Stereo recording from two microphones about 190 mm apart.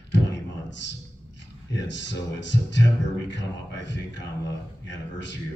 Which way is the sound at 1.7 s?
70° left (ahead or behind).